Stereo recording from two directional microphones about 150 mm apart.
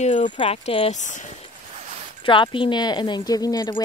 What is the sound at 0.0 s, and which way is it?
Speech, 50° left (ahead or behind).